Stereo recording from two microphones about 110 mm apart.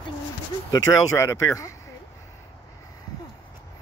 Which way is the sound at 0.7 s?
25° left (ahead or behind).